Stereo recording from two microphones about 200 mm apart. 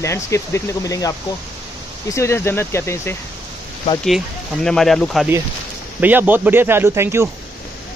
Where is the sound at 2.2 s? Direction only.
15° left (ahead or behind).